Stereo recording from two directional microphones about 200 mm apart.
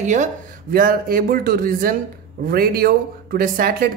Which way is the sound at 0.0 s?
40° right (ahead or behind).